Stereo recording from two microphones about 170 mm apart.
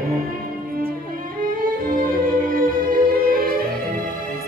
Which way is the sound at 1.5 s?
55° right (ahead or behind).